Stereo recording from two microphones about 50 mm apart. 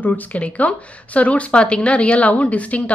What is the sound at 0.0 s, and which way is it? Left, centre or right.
Speech, left.